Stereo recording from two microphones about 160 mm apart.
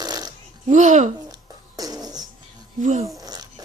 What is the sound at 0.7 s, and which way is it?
Speech, 50° right (ahead or behind).